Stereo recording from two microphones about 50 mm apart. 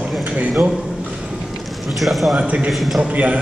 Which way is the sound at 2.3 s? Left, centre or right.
Right.